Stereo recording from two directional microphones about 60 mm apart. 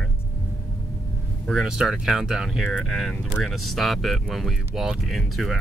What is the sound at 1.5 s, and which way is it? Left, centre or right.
Speech, centre.